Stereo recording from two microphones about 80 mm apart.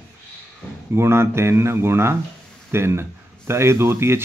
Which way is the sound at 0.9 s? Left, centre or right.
Right.